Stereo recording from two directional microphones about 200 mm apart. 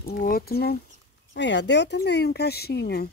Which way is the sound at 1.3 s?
60° left (ahead or behind).